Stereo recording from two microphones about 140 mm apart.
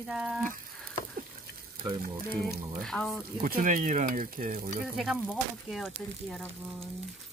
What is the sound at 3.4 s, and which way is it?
Speech, 85° right.